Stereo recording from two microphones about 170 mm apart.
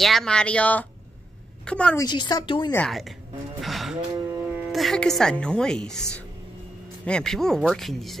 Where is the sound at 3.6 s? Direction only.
Centre (ahead or behind).